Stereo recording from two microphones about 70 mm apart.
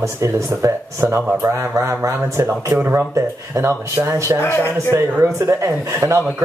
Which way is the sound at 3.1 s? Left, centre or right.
Right.